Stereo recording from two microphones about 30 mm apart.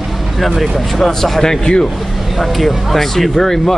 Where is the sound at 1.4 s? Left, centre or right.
Left.